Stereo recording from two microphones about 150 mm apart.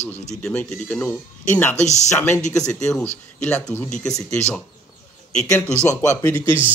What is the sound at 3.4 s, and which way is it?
Speech, 10° left (ahead or behind).